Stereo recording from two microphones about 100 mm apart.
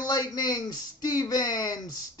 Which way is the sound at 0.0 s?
45° left (ahead or behind).